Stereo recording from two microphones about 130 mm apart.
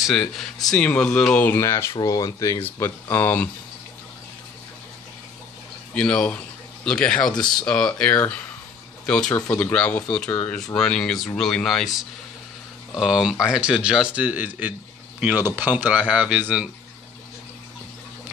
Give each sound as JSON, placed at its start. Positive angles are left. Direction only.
{"t": 0.0, "sound": "speech", "side_deg": 0}
{"t": 2.6, "sound": "speech", "side_deg": 15}
{"t": 5.9, "sound": "speech", "side_deg": 10}